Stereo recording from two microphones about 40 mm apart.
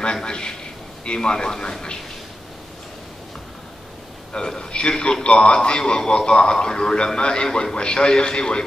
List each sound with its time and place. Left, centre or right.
0.0 s a man's voice: centre
4.3 s a man's voice: centre